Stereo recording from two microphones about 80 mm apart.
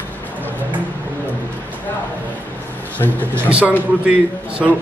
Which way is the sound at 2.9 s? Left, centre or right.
Left.